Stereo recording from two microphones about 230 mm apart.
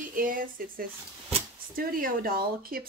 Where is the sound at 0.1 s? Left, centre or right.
Right.